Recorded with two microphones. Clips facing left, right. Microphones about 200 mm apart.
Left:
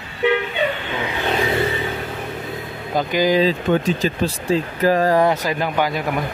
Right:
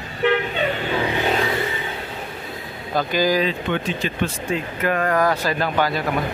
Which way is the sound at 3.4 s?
40° left (ahead or behind).